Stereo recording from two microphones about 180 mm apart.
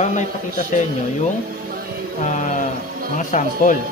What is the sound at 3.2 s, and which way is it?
Speech, 45° left (ahead or behind).